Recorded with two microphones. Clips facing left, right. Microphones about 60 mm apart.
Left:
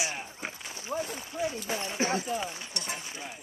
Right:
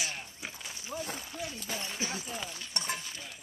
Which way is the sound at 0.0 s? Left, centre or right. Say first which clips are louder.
Left 4 dB; centre.